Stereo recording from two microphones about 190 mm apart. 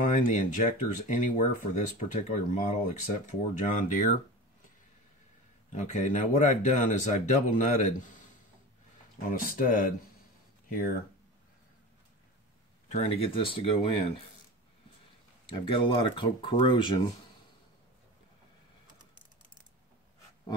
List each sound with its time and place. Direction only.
0.0 s speech: 45° left (ahead or behind)
5.7 s speech: 40° left (ahead or behind)
9.3 s speech: 45° left (ahead or behind)
12.8 s speech: 35° left (ahead or behind)
15.5 s speech: 25° left (ahead or behind)